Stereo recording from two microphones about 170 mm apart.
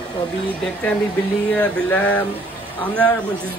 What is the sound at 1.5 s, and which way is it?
Speech, 5° left (ahead or behind).